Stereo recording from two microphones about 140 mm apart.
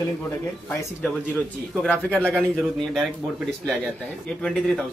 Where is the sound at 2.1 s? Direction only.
10° left (ahead or behind).